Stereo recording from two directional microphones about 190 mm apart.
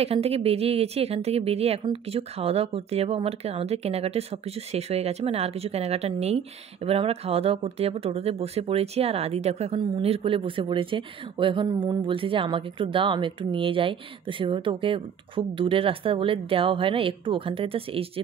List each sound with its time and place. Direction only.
0.0 s speech: 30° right (ahead or behind)